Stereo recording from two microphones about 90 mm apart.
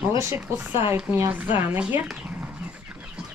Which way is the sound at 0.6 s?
25° right (ahead or behind).